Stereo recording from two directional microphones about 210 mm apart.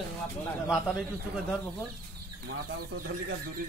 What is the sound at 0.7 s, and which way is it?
Speech, centre (ahead or behind).